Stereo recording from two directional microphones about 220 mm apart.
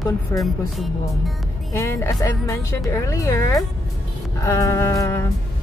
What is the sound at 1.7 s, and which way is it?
Speech, 15° left (ahead or behind).